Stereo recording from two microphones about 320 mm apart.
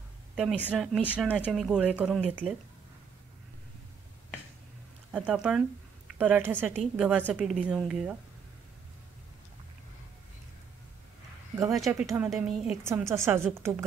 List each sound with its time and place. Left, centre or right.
0.4 s a woman's voice: centre
5.1 s a woman's voice: centre
11.5 s a woman's voice: centre